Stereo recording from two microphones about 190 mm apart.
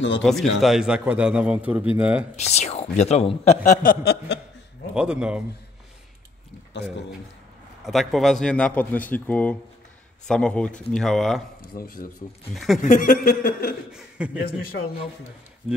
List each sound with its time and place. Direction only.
0.2 s a man's voice: centre (ahead or behind)
2.3 s speech: 35° left (ahead or behind); by 4.4 s 60° left (ahead or behind)
4.9 s a man's voice: 5° right (ahead or behind)
7.8 s a man's voice: centre (ahead or behind)
11.7 s chuckle: 50° left (ahead or behind)
12.5 s a man's voice: centre (ahead or behind)
12.8 s chuckle: 45° left (ahead or behind)
13.9 s a man's voice: 5° right (ahead or behind)
14.4 s chuckle: 50° left (ahead or behind)